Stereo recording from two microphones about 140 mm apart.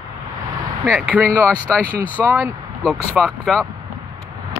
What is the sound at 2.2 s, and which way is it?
Speech, 10° right (ahead or behind).